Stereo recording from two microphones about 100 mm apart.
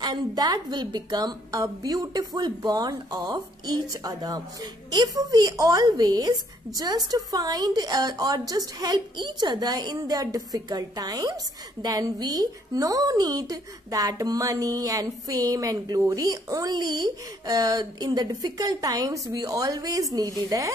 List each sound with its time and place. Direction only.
0.0 s a woman's voice: 45° right (ahead or behind)